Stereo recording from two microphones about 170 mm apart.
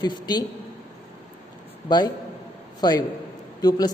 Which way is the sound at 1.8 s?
25° left (ahead or behind).